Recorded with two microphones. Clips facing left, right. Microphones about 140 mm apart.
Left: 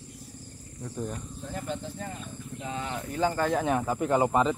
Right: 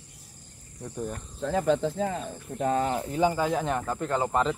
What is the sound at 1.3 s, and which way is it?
Speech, 90° right.